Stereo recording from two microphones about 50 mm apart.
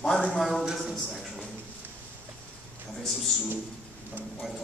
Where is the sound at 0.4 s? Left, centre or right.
Centre.